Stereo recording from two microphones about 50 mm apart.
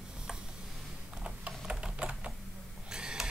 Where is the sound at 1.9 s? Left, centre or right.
Right.